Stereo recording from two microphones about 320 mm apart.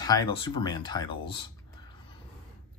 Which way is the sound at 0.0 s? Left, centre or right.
Centre.